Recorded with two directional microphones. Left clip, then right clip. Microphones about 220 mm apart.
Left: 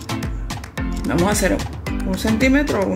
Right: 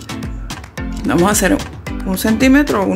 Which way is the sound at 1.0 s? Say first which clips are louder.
Right 5 dB; 15° right (ahead or behind).